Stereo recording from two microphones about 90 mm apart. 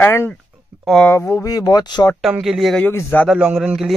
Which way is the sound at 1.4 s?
40° left (ahead or behind).